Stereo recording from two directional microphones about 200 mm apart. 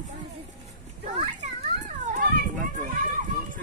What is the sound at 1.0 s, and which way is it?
Children playing, 35° right (ahead or behind).